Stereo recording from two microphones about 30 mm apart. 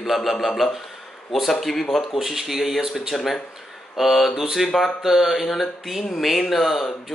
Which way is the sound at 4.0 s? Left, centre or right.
Centre.